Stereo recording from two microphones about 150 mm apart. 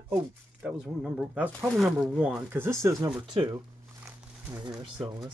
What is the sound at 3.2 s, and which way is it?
Speech, 30° right (ahead or behind).